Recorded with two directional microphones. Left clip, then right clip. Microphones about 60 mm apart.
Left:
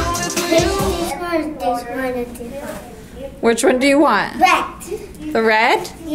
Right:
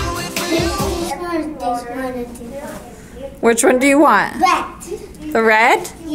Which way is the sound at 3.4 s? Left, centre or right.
Right.